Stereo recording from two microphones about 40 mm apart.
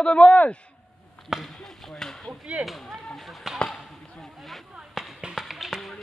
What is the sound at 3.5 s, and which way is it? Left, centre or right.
Basketball bounce, centre.